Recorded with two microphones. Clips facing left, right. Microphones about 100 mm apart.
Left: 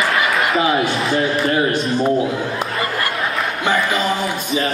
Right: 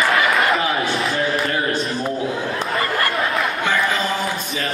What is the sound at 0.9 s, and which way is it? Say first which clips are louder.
A man's voice: left 2 dB; centre (ahead or behind).